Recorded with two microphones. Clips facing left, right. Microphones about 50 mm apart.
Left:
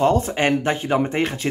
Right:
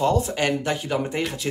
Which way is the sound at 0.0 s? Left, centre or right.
Left.